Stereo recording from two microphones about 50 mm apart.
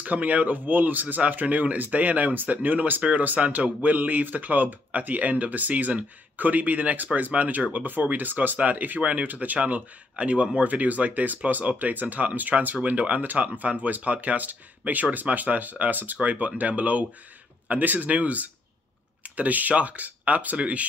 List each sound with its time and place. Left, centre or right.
0.0 s speech: right